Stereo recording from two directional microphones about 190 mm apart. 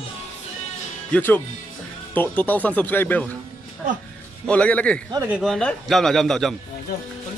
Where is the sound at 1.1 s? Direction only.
10° left (ahead or behind).